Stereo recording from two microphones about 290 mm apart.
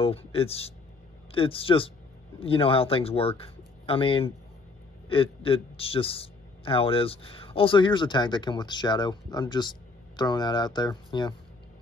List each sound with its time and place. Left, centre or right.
0.0 s speech: centre